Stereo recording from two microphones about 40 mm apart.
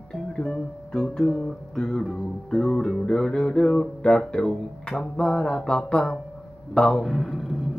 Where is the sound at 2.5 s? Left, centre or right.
Centre.